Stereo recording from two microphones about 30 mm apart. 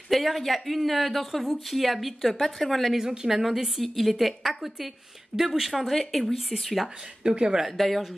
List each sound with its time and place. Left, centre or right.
0.1 s a sound: centre
0.4 s a woman's voice: centre
3.0 s speech: centre
3.3 s a woman's voice: centre
4.4 s a woman's voice: centre
5.7 s speech: centre
7.2 s speech: right
7.7 s speech: centre